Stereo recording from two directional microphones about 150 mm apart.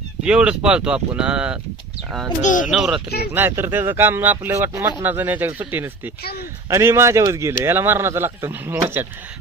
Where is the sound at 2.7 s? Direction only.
Centre (ahead or behind).